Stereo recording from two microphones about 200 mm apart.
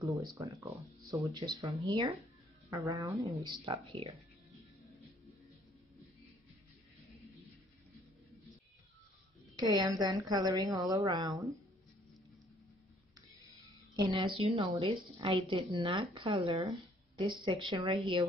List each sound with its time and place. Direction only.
0.3 s a woman's voice: 15° right (ahead or behind)
9.7 s a woman's voice: 20° right (ahead or behind)
13.9 s a woman's voice: 20° right (ahead or behind)